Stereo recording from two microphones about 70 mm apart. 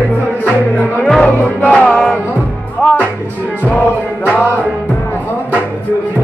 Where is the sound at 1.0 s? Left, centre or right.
Centre.